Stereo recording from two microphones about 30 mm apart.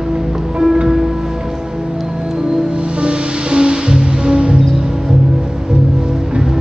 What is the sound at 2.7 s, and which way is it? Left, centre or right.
Music, right.